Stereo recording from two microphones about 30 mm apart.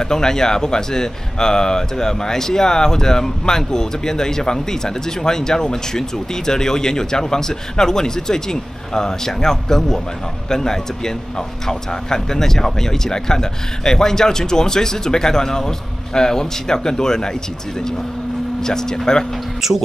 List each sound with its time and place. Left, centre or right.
0.0 s speech: left
18.6 s speech: centre
19.6 s speech: centre